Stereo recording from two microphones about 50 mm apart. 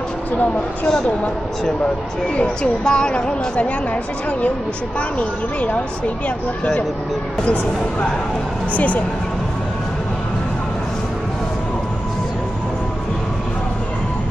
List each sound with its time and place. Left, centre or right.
0.8 s a woman's voice: centre
2.3 s a woman's voice: left
5.7 s a woman's voice: left
8.7 s speech: left